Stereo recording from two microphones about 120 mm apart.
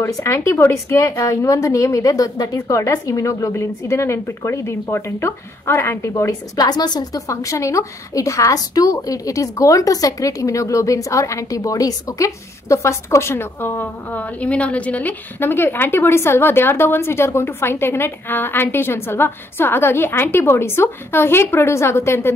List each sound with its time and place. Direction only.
0.0 s a woman's voice: 20° left (ahead or behind)